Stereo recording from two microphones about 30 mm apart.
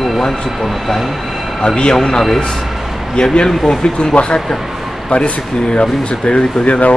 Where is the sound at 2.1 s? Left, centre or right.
Centre.